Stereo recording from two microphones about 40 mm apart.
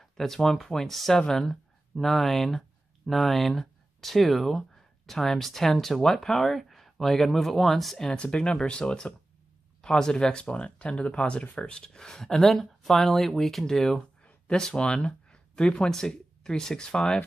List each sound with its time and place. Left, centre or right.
0.0 s speech: centre
0.8 s speech: centre
1.1 s speech: centre
8.2 s speech: left; by 13.7 s centre
14.5 s speech: centre
15.9 s speech: centre